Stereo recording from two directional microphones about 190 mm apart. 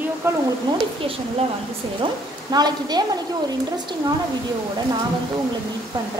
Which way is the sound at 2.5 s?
20° right (ahead or behind).